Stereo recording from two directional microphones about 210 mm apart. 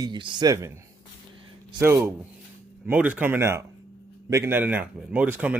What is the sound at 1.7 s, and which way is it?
Speech, 10° right (ahead or behind).